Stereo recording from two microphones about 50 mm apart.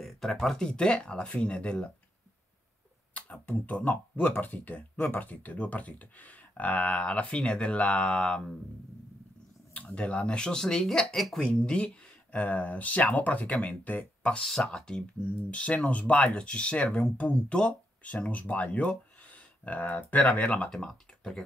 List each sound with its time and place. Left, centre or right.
0.0 s speech: centre
0.6 s speech: centre
3.2 s speech: left
9.9 s speech: left; by 11.4 s centre
11.4 s speech: left
14.4 s speech: centre
15.5 s speech: left
20.7 s speech: centre